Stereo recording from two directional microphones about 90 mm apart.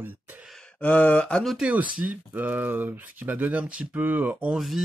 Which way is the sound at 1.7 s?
15° right (ahead or behind).